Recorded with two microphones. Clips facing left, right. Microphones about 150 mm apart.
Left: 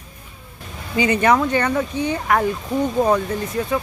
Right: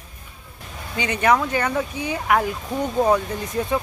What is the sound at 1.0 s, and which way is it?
Speech, centre (ahead or behind).